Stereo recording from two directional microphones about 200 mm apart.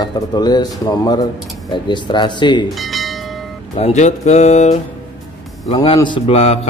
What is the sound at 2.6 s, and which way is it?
Bell, centre (ahead or behind).